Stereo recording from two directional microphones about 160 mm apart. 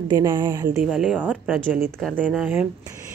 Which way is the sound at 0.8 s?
5° right (ahead or behind).